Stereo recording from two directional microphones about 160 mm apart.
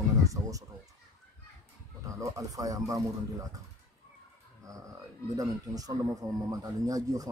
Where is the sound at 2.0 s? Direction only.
20° right (ahead or behind).